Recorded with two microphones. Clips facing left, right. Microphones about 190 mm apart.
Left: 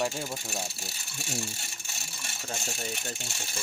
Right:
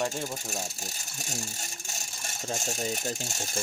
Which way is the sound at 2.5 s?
40° right (ahead or behind).